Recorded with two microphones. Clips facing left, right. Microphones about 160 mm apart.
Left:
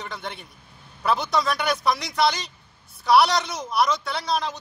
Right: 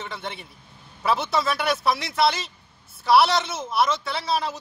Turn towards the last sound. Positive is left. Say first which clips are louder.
# even
turn(degrees=-5)  # may be behind; listen again after turning